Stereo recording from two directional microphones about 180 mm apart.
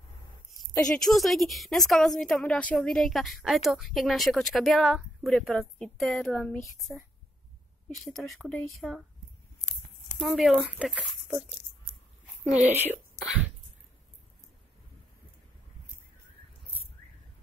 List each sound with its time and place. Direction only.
0.8 s a woman's voice: centre (ahead or behind)
10.1 s a woman's voice: centre (ahead or behind)
12.4 s speech: 10° right (ahead or behind)